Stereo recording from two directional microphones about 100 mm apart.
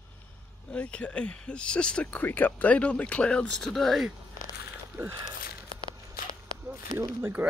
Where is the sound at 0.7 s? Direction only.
10° left (ahead or behind).